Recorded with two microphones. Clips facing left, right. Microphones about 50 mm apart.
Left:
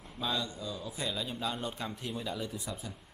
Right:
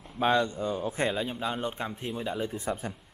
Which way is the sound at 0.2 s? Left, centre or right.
Right.